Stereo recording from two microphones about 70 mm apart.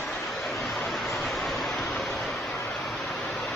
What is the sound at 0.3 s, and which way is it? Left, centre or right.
Vehicle, centre.